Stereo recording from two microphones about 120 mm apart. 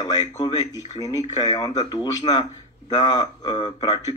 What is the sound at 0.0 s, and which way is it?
Speech, 35° left (ahead or behind).